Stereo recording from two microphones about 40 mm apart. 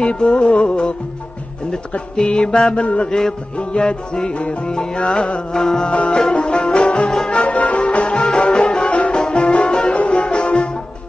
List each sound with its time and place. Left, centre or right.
0.0 s music: left
2.8 s mantra: left
3.1 s music: centre
3.5 s music: left
5.9 s music: left